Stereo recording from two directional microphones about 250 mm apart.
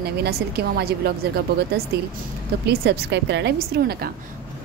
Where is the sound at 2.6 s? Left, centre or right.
Right.